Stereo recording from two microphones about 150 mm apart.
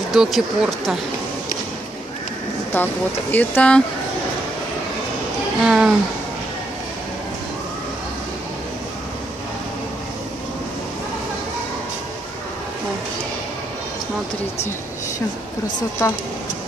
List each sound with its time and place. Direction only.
0.1 s speech: centre (ahead or behind)
2.7 s speech: 10° left (ahead or behind)
5.7 s speech: 5° right (ahead or behind)
16.0 s speech: 20° left (ahead or behind)